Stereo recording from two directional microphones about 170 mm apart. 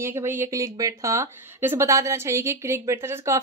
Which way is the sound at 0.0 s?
15° right (ahead or behind).